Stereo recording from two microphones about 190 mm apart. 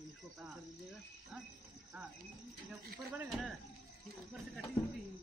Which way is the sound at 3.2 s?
5° right (ahead or behind).